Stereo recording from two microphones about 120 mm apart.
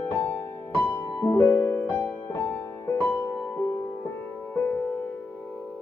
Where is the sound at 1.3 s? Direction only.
20° left (ahead or behind).